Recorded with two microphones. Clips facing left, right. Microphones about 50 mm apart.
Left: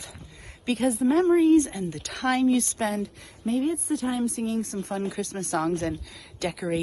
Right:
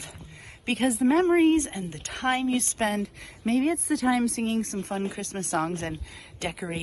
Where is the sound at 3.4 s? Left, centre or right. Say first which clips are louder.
Right 1 dB; right.